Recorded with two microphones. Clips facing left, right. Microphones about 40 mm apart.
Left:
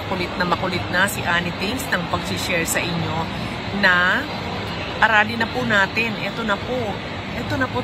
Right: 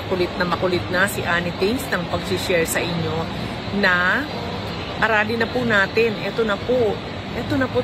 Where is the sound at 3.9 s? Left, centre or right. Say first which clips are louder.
Left 2 dB; centre.